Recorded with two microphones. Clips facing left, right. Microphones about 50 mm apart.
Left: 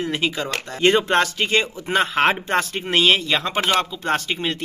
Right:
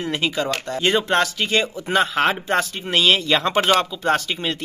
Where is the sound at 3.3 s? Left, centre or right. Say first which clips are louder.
Right 3 dB; centre.